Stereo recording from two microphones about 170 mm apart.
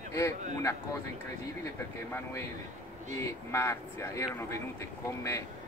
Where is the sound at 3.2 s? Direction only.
15° left (ahead or behind).